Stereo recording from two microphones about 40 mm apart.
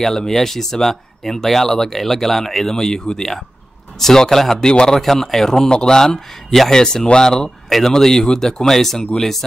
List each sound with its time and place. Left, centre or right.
0.0 s speech: centre
4.6 s speech: centre